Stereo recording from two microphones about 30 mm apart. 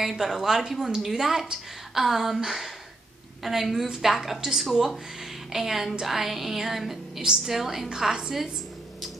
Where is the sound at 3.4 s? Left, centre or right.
Centre.